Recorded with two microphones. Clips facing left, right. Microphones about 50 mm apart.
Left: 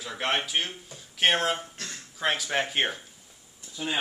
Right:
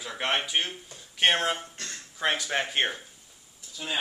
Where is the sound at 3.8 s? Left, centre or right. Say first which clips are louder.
Left 3 dB; centre.